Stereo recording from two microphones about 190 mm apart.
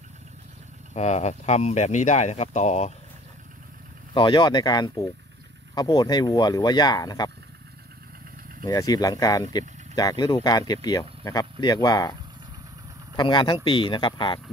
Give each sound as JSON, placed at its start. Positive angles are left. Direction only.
{"t": 0.9, "sound": "speech", "side_deg": 35}
{"t": 4.1, "sound": "speech", "side_deg": 25}
{"t": 8.6, "sound": "speech", "side_deg": 20}